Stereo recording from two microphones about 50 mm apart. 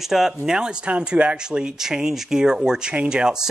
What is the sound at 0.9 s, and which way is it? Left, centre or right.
Speech, right.